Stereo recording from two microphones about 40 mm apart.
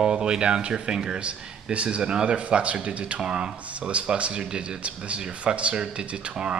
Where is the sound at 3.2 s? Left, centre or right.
Right.